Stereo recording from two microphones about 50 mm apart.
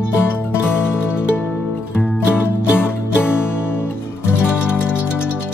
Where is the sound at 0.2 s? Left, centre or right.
Left.